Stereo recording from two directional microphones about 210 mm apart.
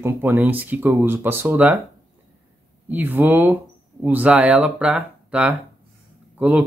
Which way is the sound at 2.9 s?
10° right (ahead or behind).